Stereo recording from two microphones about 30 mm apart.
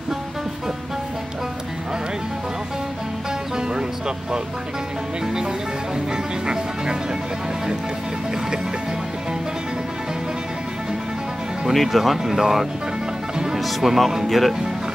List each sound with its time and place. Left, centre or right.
3.5 s music: right
5.2 s music: right
11.7 s speech: centre
12.2 s speech: centre
13.6 s speech: centre
14.2 s speech: centre